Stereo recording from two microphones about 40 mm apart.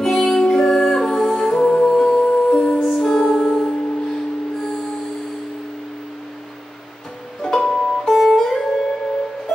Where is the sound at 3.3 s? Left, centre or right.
Centre.